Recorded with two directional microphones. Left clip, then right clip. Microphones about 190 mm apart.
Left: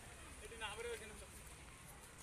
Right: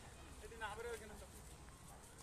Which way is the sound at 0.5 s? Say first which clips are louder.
Even; 30° right (ahead or behind).